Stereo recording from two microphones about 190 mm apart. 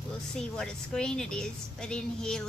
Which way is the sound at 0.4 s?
5° left (ahead or behind).